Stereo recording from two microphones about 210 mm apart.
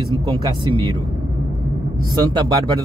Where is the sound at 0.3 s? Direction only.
20° right (ahead or behind).